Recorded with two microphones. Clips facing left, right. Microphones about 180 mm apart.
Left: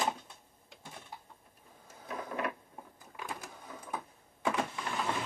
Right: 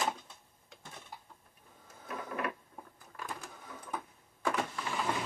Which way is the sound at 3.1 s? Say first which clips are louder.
Left 1 dB; 10° left (ahead or behind).